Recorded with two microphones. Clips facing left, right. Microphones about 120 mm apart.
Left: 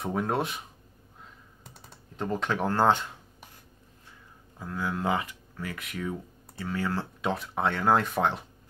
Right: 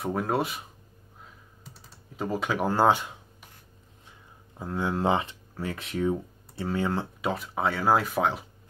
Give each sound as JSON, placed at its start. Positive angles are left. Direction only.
{"t": 0.0, "sound": "speech", "side_deg": 0}
{"t": 2.1, "sound": "speech", "side_deg": -5}
{"t": 4.6, "sound": "speech", "side_deg": -25}
{"t": 7.2, "sound": "speech", "side_deg": 0}